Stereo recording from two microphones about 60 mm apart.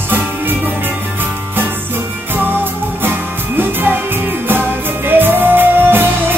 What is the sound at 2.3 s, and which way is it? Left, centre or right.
Music, right.